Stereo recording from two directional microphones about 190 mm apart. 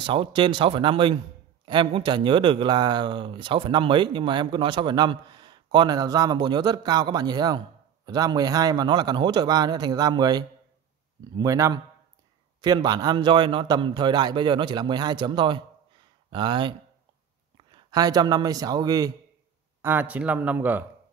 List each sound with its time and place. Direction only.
0.0 s speech: 25° right (ahead or behind)
19.8 s speech: 10° right (ahead or behind)